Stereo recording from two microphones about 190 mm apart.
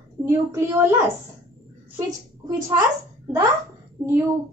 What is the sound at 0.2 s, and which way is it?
Speech, 15° right (ahead or behind).